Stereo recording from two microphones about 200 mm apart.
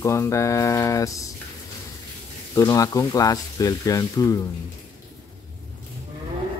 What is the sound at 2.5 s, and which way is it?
Speech, 15° left (ahead or behind).